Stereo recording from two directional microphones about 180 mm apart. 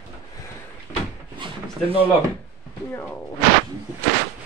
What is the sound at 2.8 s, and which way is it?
Speech, 10° left (ahead or behind).